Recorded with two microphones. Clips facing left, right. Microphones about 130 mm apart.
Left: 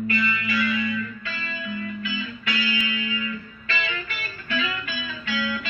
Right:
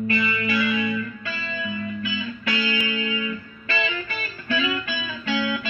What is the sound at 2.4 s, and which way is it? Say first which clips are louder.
Music: right 3 dB; 25° right (ahead or behind).